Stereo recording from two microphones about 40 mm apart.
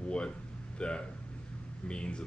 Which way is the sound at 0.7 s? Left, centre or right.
Left.